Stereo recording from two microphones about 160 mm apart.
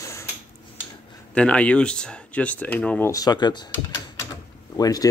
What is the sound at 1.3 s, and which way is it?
Speech, 5° left (ahead or behind).